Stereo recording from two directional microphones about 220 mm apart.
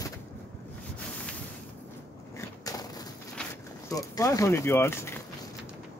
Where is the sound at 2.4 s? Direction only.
15° left (ahead or behind).